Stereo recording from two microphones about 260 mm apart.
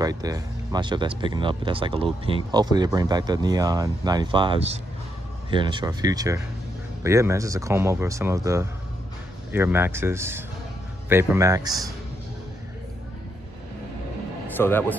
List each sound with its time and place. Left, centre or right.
0.0 s speech: centre
14.6 s a man's voice: centre